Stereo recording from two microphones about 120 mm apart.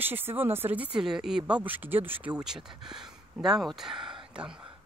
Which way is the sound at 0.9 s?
5° right (ahead or behind).